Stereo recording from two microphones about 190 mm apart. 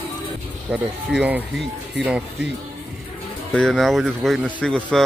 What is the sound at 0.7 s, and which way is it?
Speech, 10° right (ahead or behind).